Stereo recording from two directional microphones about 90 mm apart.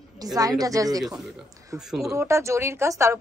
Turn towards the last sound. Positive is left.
turn(degrees=-30)  # may be behind; listen again after turning